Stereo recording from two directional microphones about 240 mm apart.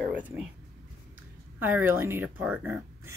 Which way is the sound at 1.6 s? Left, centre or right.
Centre.